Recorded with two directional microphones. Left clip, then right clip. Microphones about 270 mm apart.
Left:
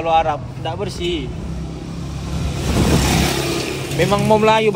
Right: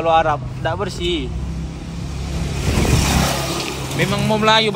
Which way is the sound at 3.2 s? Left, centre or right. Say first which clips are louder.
Left 1 dB; right.